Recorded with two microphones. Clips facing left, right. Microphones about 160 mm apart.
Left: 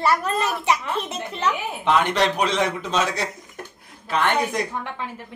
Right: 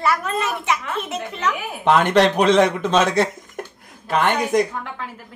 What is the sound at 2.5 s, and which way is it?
Speech, 90° right.